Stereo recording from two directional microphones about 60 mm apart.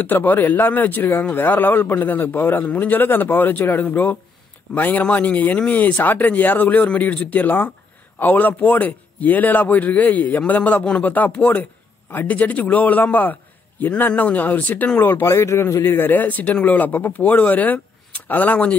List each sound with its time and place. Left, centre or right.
0.0 s a man's voice: left
10.8 s speech: centre
11.1 s a man's voice: left
15.2 s a man's voice: left